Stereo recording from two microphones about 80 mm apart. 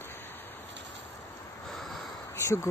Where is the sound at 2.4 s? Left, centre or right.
Left.